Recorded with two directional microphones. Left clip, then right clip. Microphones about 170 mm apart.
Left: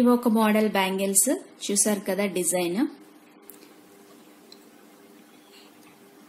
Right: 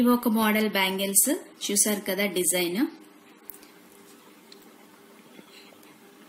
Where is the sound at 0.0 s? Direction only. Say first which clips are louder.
Left 2 dB; 45° left (ahead or behind).